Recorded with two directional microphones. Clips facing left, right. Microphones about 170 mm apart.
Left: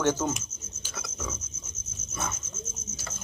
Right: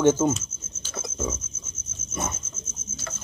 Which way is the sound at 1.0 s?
25° right (ahead or behind).